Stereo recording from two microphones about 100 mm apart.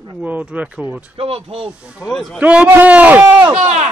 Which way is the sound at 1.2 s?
75° right (ahead or behind).